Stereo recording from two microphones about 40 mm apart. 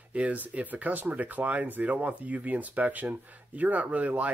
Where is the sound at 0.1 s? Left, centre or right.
Right.